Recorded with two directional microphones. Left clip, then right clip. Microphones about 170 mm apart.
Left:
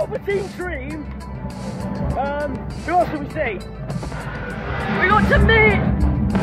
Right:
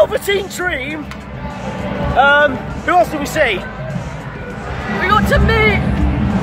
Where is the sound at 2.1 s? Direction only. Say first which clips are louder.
Right 14 dB; 25° right (ahead or behind).